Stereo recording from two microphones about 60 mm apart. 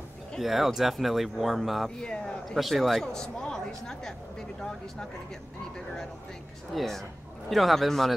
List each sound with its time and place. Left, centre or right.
0.4 s speech: centre
2.0 s speech: centre
6.7 s speech: centre